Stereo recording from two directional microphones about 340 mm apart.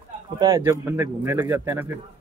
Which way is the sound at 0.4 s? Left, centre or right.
Centre.